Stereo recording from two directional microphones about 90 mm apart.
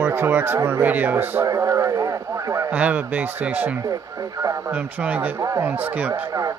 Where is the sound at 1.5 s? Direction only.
35° right (ahead or behind).